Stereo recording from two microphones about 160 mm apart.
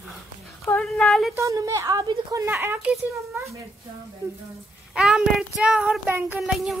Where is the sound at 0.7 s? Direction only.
5° left (ahead or behind).